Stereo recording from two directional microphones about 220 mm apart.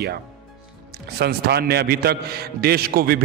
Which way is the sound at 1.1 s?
45° right (ahead or behind).